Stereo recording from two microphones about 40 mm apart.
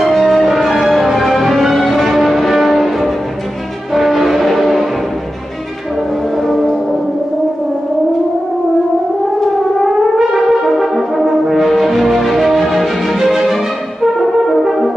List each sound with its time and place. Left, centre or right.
0.0 s music: centre
6.4 s music: centre
9.8 s brass instrument: centre
14.5 s french horn: centre